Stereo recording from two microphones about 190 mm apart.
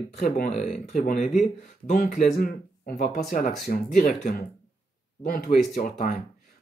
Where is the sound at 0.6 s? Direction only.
40° left (ahead or behind).